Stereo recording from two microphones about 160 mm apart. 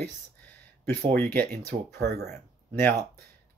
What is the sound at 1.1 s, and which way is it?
Speech, 10° left (ahead or behind).